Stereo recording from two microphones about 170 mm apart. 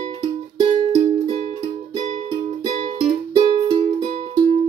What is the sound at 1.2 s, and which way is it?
Music, 25° right (ahead or behind).